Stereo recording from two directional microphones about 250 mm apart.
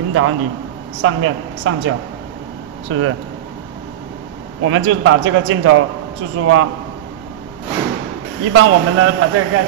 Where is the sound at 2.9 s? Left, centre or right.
Right.